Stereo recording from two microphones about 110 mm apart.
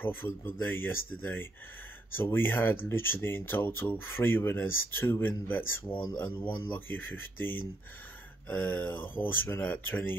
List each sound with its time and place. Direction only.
0.4 s speech: 20° left (ahead or behind)